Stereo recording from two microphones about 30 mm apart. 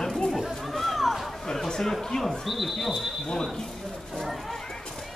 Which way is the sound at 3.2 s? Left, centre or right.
Centre.